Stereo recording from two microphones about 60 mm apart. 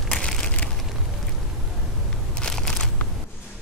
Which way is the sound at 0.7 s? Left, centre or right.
Centre.